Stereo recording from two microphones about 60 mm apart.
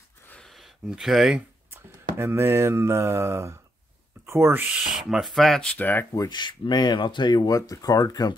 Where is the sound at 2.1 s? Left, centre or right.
Right.